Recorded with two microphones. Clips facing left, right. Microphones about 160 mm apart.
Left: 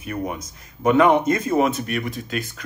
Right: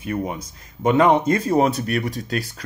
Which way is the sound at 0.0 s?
30° right (ahead or behind).